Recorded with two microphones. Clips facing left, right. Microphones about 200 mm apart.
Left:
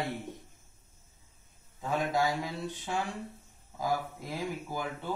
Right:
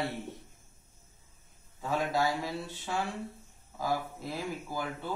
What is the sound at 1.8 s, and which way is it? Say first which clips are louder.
Speech: even; 15° left (ahead or behind).